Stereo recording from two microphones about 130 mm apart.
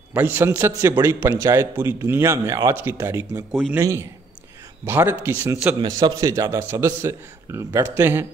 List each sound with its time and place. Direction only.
0.1 s a man's voice: 15° right (ahead or behind)
5.8 s a man's voice: 30° right (ahead or behind)